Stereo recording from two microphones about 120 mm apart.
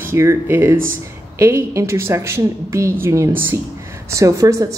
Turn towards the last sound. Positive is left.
turn(degrees=-30)  # may be behind; listen again after turning